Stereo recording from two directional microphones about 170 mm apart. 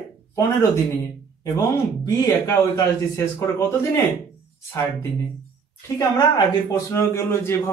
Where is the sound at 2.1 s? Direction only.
15° left (ahead or behind).